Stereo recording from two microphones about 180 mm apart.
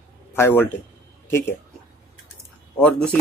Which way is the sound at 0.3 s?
10° left (ahead or behind).